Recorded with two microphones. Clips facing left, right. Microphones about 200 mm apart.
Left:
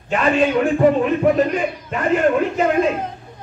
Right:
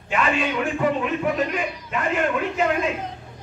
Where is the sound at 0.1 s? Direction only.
40° left (ahead or behind).